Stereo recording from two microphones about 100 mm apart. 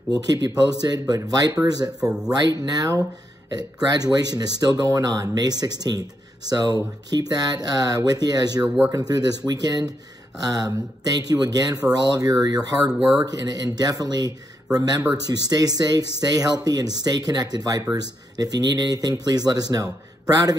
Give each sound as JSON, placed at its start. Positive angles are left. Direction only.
{"t": 0.1, "sound": "speech", "side_deg": -40}